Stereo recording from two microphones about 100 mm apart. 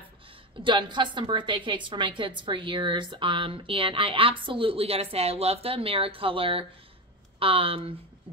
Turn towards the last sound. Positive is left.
turn(degrees=-70)  # may be behind; listen again after turning